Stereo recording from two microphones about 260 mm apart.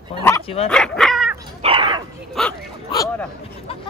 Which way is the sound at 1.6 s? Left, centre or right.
Centre.